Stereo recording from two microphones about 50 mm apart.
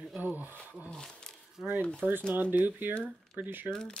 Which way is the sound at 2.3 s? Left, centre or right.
Right.